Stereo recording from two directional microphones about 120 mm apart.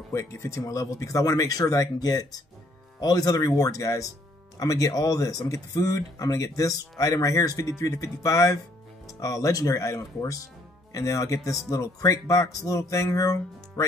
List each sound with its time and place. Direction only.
0.1 s speech: 25° left (ahead or behind)